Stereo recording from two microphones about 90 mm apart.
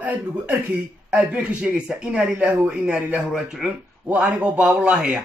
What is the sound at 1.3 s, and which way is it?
Speech, 10° right (ahead or behind).